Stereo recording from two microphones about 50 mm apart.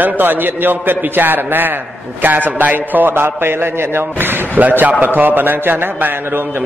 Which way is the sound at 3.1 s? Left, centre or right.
Right.